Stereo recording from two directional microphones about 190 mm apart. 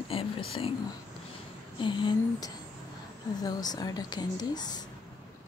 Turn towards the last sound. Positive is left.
turn(degrees=20)  # may be behind; listen again after turning